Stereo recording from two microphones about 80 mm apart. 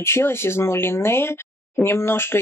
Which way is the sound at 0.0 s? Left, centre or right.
Left.